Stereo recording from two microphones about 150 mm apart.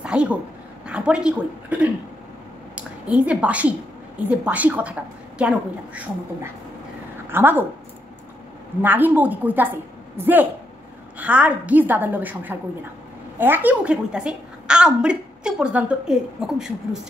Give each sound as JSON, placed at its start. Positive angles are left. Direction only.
{"t": 0.0, "sound": "a sound", "side_deg": -5}
{"t": 0.8, "sound": "a woman's voice", "side_deg": -5}
{"t": 8.8, "sound": "a woman's voice", "side_deg": -10}